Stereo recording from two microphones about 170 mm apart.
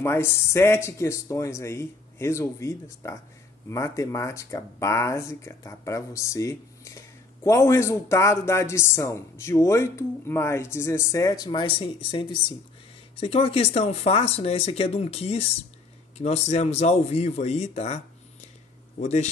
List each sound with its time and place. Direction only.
0.0 s speech: 15° left (ahead or behind); by 19.2 s 40° left (ahead or behind)